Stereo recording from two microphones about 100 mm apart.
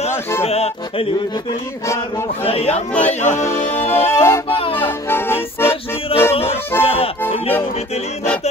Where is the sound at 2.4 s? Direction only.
85° left.